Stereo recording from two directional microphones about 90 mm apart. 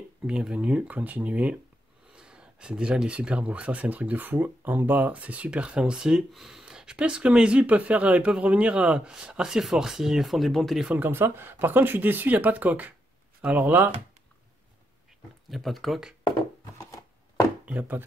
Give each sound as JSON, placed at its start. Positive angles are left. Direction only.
{"t": 0.3, "sound": "speech", "side_deg": -10}
{"t": 10.9, "sound": "speech", "side_deg": -20}
{"t": 15.5, "sound": "speech", "side_deg": 0}
{"t": 16.7, "sound": "a sound", "side_deg": 35}
{"t": 17.6, "sound": "speech", "side_deg": -20}